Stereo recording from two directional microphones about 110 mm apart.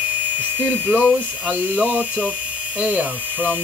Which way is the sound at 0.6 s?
15° right (ahead or behind).